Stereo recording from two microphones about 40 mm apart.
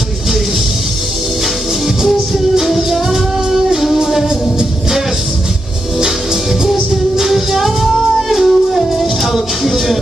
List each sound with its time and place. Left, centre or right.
2.0 s music: centre
6.6 s music: centre